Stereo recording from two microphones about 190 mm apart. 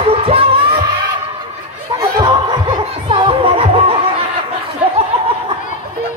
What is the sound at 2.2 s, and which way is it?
Music, 25° right (ahead or behind).